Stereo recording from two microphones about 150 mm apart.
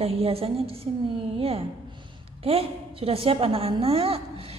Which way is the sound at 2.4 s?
40° right (ahead or behind).